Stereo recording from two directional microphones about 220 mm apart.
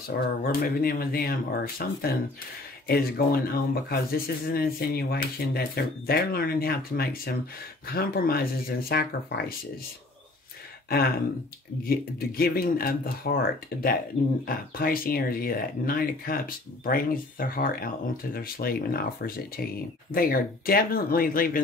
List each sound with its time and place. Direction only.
0.4 s speech: 40° left (ahead or behind)
11.9 s speech: 45° left (ahead or behind)